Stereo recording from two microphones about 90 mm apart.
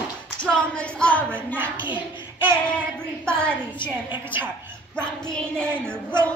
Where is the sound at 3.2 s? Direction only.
10° left (ahead or behind).